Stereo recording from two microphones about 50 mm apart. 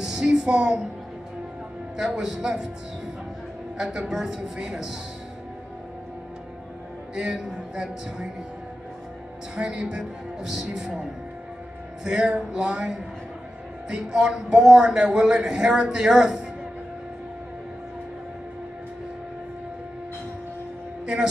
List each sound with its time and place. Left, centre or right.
0.0 s music: centre
2.0 s a man's voice: centre
3.7 s a man's voice: centre
7.3 s a man's voice: centre
9.6 s a man's voice: centre
12.0 s a man's voice: centre
21.0 s a sound: centre